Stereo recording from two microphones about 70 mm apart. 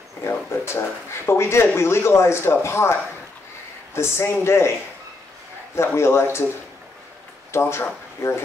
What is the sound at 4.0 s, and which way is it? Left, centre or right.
Speech, left.